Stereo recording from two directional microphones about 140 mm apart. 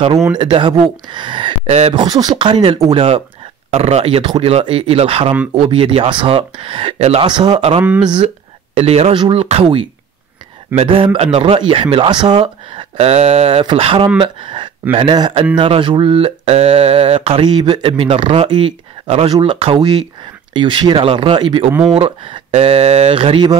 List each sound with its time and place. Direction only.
0.4 s speech: 35° right (ahead or behind)
1.7 s speech: 45° right (ahead or behind)
2.0 s speech: 30° right (ahead or behind); by 7.2 s 45° right (ahead or behind)
7.2 s speech: 35° right (ahead or behind)
7.5 s speech: 45° right (ahead or behind)
7.8 s speech: 10° right (ahead or behind)
8.7 s speech: 45° right (ahead or behind)
17.5 s speech: 35° right (ahead or behind)